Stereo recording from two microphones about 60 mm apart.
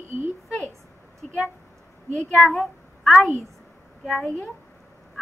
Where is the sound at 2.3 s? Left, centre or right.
Centre.